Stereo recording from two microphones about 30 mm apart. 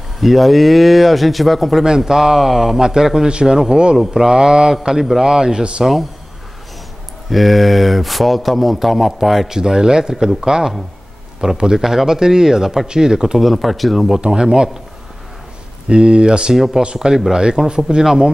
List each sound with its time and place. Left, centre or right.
0.2 s a man's voice: centre
1.9 s speech: centre
2.8 s speech: centre
3.3 s speech: right
7.2 s a man's voice: centre
9.5 s speech: right
13.4 s a man's voice: centre
14.2 s speech: right
15.9 s speech: right
16.5 s speech: centre
16.8 s speech: right